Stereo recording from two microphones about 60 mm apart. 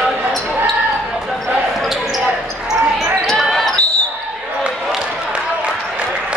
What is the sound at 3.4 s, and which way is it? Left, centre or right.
Basketball bounce, centre.